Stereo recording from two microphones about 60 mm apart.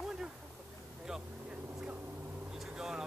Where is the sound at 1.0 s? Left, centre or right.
Centre.